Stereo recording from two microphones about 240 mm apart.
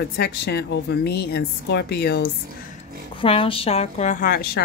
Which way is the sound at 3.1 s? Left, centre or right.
Left.